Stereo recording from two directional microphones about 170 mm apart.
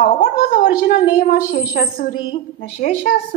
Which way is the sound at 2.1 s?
30° left (ahead or behind).